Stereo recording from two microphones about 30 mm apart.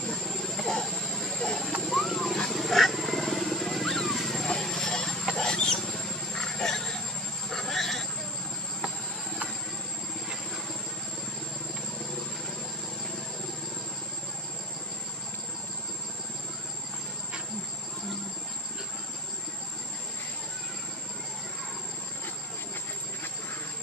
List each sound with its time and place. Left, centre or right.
0.7 s vehicle: left
1.8 s wild animals: centre
4.6 s vehicle: left
5.3 s rodents: left
6.3 s a sound: centre